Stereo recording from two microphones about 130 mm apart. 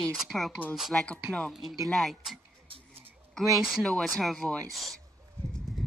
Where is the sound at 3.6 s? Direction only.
5° left (ahead or behind).